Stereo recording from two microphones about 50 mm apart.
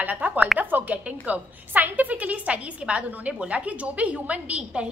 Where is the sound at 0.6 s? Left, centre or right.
Right.